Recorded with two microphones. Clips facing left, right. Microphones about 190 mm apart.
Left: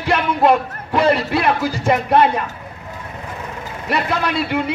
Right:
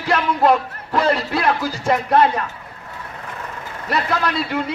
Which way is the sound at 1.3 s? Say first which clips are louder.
Left 2 dB; 5° left (ahead or behind).